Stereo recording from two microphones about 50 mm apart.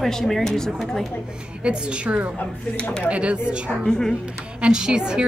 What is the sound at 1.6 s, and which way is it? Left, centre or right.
A woman's voice, right.